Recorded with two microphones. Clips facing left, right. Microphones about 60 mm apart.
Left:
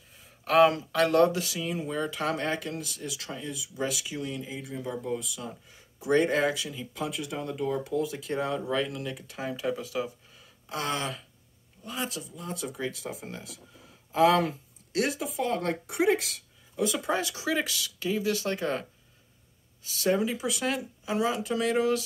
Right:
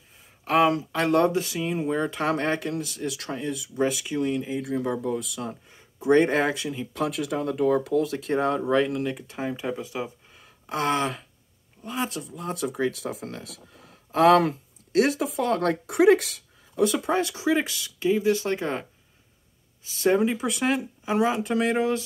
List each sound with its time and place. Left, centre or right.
0.5 s speech: centre
1.0 s speech: right
3.7 s speech: right
4.6 s speech: right
5.7 s speech: right
6.9 s speech: right
8.3 s speech: right
10.4 s a sound: right
11.8 s speech: right
14.9 s speech: right
17.0 s speech: right
19.9 s speech: right
20.2 s speech: right